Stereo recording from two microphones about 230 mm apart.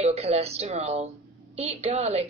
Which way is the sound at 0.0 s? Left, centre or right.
Right.